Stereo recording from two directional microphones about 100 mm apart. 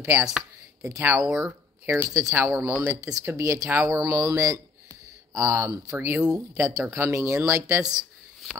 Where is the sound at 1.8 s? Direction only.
30° right (ahead or behind).